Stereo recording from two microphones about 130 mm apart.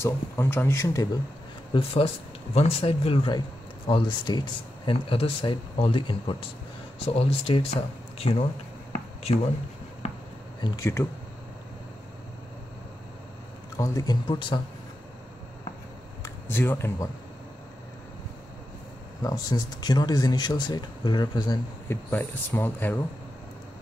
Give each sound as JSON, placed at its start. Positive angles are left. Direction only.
{"t": 0.0, "sound": "speech", "side_deg": 20}
{"t": 1.7, "sound": "speech", "side_deg": 45}
{"t": 10.8, "sound": "speech", "side_deg": 20}
{"t": 13.7, "sound": "speech", "side_deg": 25}
{"t": 14.2, "sound": "speech", "side_deg": 35}
{"t": 16.2, "sound": "speech", "side_deg": 15}
{"t": 19.2, "sound": "speech", "side_deg": 30}
{"t": 21.8, "sound": "speech", "side_deg": 15}